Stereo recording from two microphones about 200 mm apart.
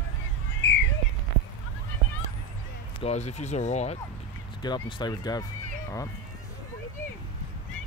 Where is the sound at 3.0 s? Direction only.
35° left (ahead or behind).